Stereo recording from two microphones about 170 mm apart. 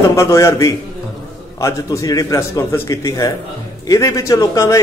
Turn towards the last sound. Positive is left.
turn(degrees=20)  # may be behind; listen again after turning